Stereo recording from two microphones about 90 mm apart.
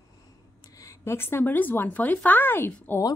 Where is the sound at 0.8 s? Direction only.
35° left (ahead or behind).